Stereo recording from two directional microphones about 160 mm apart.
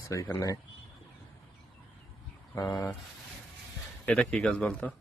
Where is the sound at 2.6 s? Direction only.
20° left (ahead or behind).